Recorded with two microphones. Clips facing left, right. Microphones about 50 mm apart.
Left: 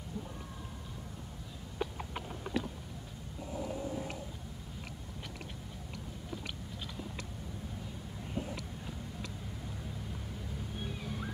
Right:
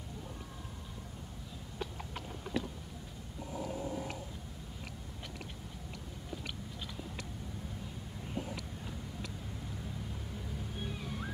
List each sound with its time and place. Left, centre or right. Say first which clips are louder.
1.8 s horse: left 4 dB; centre
10.8 s music: even; centre